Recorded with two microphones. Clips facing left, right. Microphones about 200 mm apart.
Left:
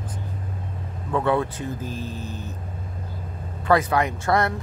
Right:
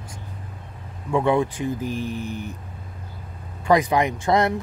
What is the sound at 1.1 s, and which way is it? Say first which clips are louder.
Speech: right 2 dB; 15° right (ahead or behind).